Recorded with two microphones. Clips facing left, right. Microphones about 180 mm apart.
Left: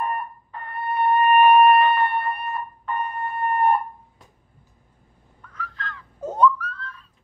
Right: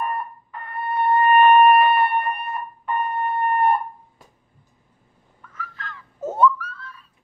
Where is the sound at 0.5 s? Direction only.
25° left (ahead or behind); by 2.9 s 15° right (ahead or behind).